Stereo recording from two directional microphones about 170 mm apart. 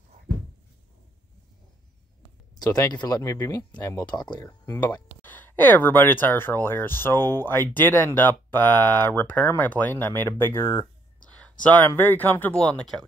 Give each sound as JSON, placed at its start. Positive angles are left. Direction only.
{"t": 2.5, "sound": "speech", "side_deg": 20}
{"t": 5.2, "sound": "speech", "side_deg": 10}